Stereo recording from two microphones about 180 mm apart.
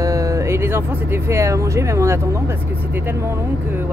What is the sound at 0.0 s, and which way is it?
Speech, 20° right (ahead or behind).